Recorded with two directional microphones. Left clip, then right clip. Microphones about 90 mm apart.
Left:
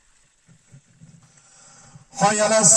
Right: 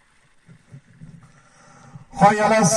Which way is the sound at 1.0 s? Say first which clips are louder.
Right 5 dB; 50° right (ahead or behind).